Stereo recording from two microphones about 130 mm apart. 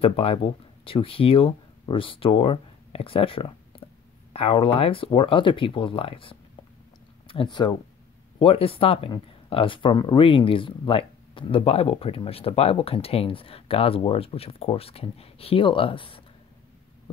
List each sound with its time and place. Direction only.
0.0 s speech: 45° left (ahead or behind)
3.8 s a sound: 45° left (ahead or behind)
4.3 s speech: 50° left (ahead or behind)
7.6 s speech: 35° left (ahead or behind)
8.4 s speech: 45° left (ahead or behind)